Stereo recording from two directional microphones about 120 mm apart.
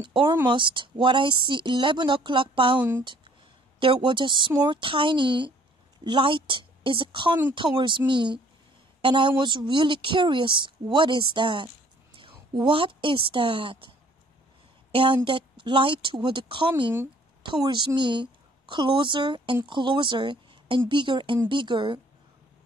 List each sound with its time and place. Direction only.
0.0 s a woman's voice: 45° right (ahead or behind)
3.8 s a woman's voice: 45° right (ahead or behind)